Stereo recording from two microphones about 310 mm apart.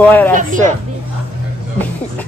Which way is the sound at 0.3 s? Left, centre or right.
Right.